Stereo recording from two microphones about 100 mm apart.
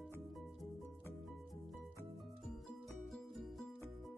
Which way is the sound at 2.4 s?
Centre (ahead or behind).